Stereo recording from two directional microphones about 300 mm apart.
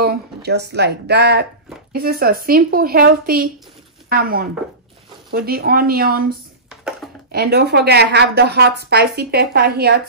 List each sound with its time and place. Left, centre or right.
0.0 s a woman's voice: right